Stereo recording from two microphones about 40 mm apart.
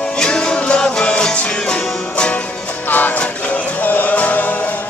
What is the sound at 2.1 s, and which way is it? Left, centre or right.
Music, left.